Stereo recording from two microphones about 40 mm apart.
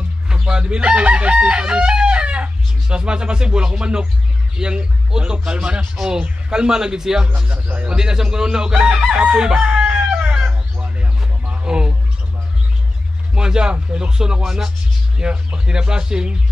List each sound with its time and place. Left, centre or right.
0.3 s speech: right
7.3 s speech: right
7.9 s speech: centre
9.8 s chicken: right
11.6 s bird: right
13.3 s speech: right